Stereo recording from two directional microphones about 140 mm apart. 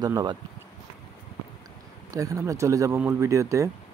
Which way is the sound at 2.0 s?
25° right (ahead or behind).